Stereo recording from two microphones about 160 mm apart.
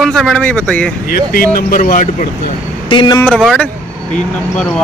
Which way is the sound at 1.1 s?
65° left (ahead or behind).